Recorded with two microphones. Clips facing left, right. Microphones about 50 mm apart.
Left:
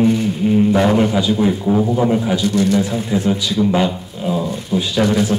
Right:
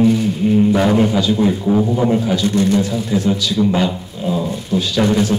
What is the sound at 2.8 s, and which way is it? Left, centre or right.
Speech, left.